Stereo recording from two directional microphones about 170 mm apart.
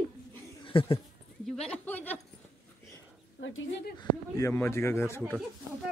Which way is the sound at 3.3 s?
80° left.